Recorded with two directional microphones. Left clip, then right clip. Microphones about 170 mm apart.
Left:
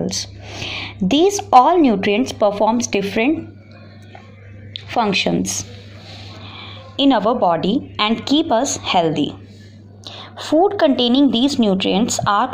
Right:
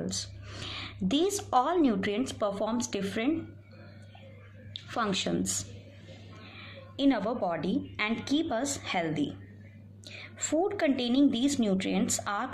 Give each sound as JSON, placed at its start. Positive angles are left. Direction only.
{"t": 0.1, "sound": "a woman's voice", "side_deg": 20}
{"t": 4.7, "sound": "a woman's voice", "side_deg": 20}
{"t": 6.4, "sound": "a woman's voice", "side_deg": 25}